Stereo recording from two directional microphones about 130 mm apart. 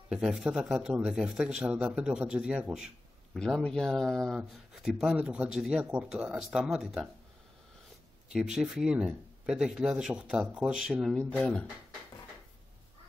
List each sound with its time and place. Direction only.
0.1 s speech: 5° right (ahead or behind)
8.3 s speech: 5° right (ahead or behind)
11.1 s speech: 10° left (ahead or behind)